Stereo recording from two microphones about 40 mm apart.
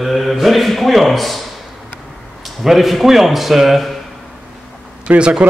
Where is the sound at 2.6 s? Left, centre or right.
Centre.